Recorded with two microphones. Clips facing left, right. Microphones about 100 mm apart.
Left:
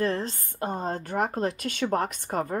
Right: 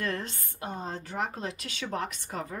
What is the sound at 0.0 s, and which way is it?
Speech, 30° left (ahead or behind).